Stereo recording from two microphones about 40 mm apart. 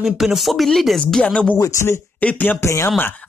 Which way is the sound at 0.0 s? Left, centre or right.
Centre.